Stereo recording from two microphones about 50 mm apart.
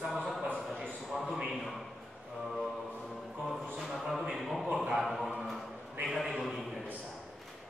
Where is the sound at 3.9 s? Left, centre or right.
Centre.